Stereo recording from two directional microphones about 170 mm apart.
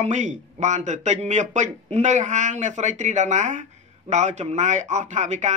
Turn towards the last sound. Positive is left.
turn(degrees=-45)  # may be behind; listen again after turning